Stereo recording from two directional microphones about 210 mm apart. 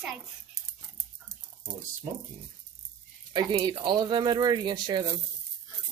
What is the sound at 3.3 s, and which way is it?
Speech, 20° right (ahead or behind).